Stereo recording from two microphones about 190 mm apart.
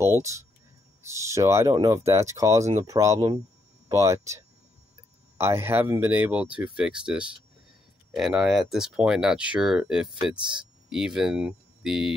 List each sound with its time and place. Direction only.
0.0 s speech: 15° right (ahead or behind)
5.4 s speech: 10° right (ahead or behind)